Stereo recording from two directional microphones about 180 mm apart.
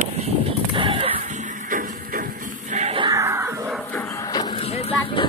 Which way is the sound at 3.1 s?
15° right (ahead or behind).